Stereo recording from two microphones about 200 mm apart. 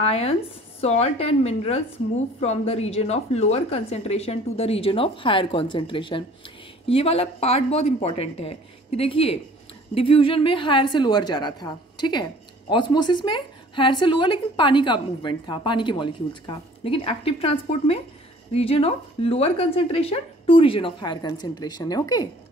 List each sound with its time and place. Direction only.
0.0 s a woman's voice: 30° left (ahead or behind)